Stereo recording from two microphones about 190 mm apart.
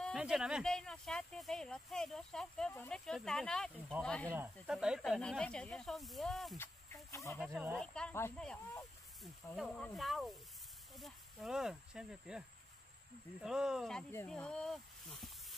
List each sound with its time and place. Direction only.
0.0 s speech: 5° right (ahead or behind)
7.1 s speech: 15° left (ahead or behind)
7.3 s speech: centre (ahead or behind)
9.6 s speech: centre (ahead or behind)